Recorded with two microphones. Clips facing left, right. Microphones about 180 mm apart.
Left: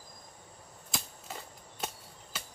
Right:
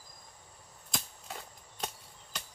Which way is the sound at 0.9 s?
Centre (ahead or behind).